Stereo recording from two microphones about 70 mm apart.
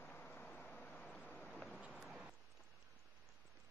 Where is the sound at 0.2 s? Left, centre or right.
Left.